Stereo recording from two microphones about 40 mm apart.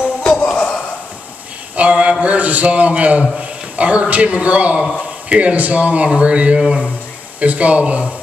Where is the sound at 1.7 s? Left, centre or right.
Right.